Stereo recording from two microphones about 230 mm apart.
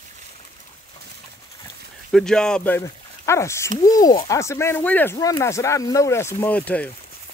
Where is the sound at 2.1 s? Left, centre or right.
Centre.